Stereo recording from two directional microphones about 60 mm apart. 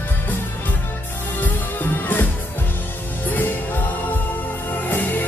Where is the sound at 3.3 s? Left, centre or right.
Left.